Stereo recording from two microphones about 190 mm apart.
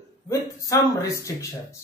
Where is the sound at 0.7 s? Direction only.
20° left (ahead or behind).